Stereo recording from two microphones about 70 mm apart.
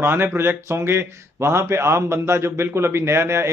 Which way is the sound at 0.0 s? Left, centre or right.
Right.